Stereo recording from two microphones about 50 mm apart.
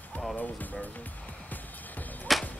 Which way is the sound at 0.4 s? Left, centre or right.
Left.